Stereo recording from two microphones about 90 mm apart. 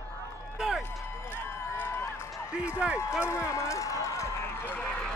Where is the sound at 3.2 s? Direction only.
30° left (ahead or behind); by 5.1 s 10° left (ahead or behind).